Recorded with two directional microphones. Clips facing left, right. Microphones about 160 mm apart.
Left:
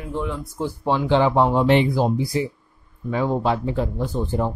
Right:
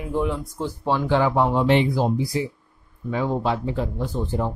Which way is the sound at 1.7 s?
55° left (ahead or behind).